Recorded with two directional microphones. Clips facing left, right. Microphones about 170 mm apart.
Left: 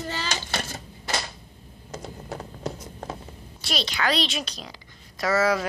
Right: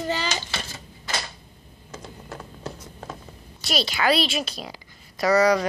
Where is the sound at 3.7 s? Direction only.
5° right (ahead or behind).